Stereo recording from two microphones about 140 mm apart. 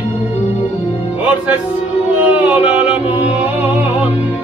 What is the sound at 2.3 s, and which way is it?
Music, 10° right (ahead or behind).